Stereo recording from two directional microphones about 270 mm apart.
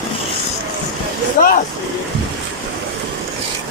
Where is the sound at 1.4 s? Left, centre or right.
Left.